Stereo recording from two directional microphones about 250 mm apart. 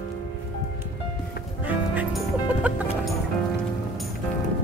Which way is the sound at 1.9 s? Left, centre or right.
Centre.